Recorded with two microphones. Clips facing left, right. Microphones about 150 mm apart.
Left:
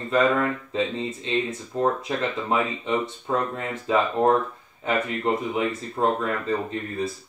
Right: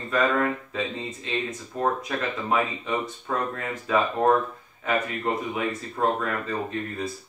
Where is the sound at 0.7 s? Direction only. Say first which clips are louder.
Left 4 dB; 25° left (ahead or behind).